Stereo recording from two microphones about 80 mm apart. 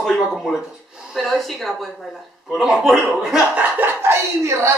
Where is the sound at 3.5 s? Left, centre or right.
Right.